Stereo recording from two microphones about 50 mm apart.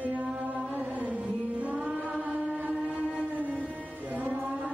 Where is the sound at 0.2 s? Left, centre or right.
Right.